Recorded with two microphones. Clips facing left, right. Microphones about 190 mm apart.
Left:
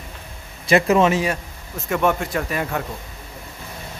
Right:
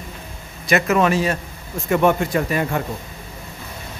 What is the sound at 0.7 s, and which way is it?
Speech, 30° left (ahead or behind).